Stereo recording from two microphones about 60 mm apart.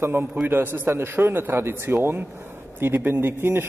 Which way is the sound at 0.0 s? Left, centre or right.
Right.